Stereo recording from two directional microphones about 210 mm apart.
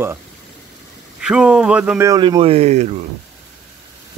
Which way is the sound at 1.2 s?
5° right (ahead or behind).